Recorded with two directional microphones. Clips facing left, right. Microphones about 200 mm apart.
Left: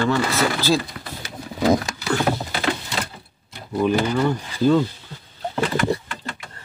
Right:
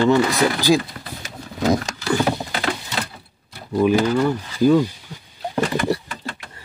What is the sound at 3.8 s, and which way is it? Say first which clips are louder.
Speech: right 3 dB; 5° right (ahead or behind).